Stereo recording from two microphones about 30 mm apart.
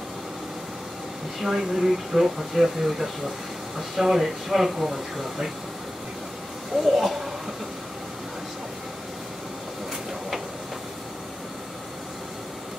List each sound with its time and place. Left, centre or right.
1.4 s speech: centre
6.9 s speech: centre